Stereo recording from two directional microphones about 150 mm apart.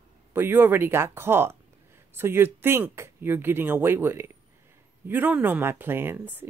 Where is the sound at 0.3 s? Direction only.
15° right (ahead or behind).